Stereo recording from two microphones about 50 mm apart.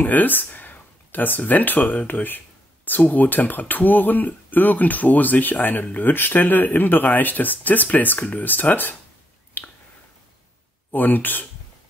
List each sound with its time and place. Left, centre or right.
0.0 s speech: left
9.6 s a sound: left
10.9 s speech: left